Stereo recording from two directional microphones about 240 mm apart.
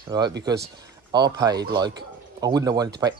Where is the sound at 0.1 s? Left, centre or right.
Centre.